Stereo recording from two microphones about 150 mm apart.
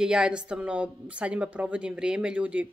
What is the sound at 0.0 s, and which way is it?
Speech, 5° right (ahead or behind).